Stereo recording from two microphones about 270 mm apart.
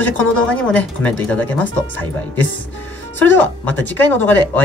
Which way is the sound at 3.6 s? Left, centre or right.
Centre.